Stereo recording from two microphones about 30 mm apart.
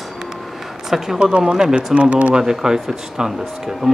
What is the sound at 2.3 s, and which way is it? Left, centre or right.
Speech, centre.